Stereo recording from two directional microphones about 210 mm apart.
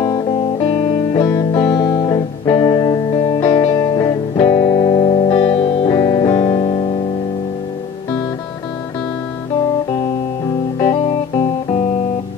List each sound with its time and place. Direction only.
1.1 s music: 20° left (ahead or behind)
5.9 s music: 20° left (ahead or behind)
10.8 s music: 20° left (ahead or behind)